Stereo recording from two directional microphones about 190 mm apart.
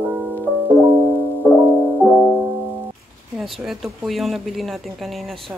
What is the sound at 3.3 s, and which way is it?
Speech, centre (ahead or behind).